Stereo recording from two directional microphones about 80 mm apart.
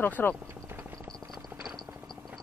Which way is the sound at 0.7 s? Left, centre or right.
Right.